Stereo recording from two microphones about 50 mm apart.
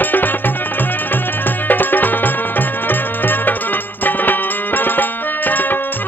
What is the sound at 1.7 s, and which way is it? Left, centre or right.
Music, left.